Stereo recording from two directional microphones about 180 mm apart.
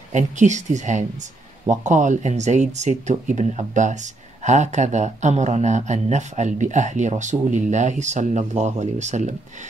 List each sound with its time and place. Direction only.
0.1 s speech: 40° right (ahead or behind)